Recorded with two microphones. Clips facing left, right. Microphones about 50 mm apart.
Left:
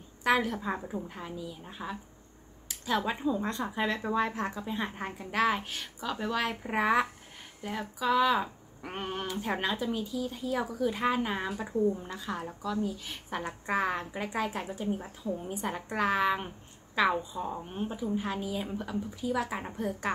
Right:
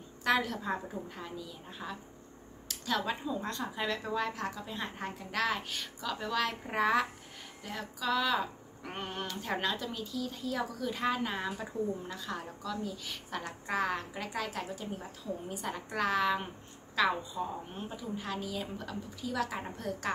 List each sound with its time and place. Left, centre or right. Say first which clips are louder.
0.2 s a woman's voice: left 3 dB; centre